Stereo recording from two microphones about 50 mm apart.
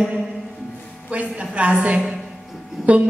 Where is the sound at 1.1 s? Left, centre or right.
Right.